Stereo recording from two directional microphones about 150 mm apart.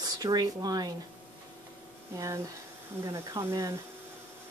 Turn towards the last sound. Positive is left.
turn(degrees=-20)  # may be behind; listen again after turning